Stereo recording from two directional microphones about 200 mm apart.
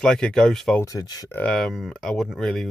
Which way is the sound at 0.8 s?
20° left (ahead or behind).